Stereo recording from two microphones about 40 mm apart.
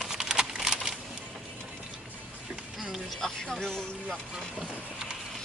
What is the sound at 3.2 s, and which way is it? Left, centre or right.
Speech, centre.